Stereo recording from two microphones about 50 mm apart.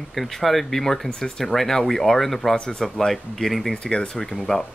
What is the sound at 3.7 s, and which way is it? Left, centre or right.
Speech, centre.